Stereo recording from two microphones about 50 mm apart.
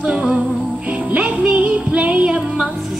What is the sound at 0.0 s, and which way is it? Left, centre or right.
Music, right.